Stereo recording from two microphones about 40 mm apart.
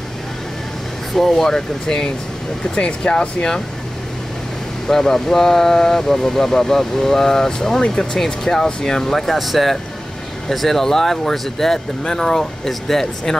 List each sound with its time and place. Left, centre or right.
1.1 s speech: centre; by 3.6 s left
4.8 s speech: centre